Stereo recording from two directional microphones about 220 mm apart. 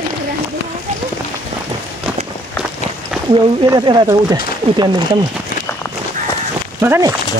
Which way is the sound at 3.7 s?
20° right (ahead or behind).